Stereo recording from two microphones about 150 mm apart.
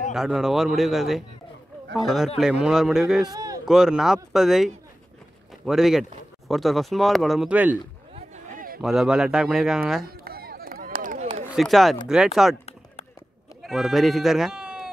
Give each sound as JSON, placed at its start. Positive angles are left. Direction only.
{"t": 0.1, "sound": "speech", "side_deg": 0}
{"t": 3.3, "sound": "speech", "side_deg": -25}
{"t": 3.6, "sound": "speech", "side_deg": -5}
{"t": 8.5, "sound": "run", "side_deg": -70}
{"t": 8.8, "sound": "speech", "side_deg": -5}
{"t": 10.0, "sound": "a sound", "side_deg": -85}
{"t": 11.0, "sound": "a sound", "side_deg": -60}
{"t": 11.5, "sound": "speech", "side_deg": 0}
{"t": 13.6, "sound": "speech", "side_deg": 0}